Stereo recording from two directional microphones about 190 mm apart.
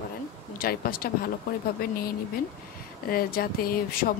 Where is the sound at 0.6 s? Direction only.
50° left (ahead or behind).